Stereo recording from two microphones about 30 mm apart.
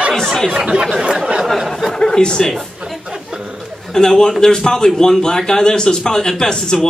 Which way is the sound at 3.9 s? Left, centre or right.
Centre.